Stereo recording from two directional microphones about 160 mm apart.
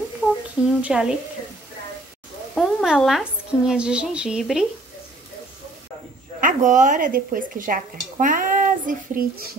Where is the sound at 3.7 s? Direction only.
5° right (ahead or behind).